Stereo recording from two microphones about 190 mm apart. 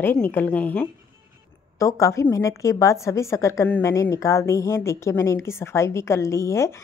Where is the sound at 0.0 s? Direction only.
10° left (ahead or behind).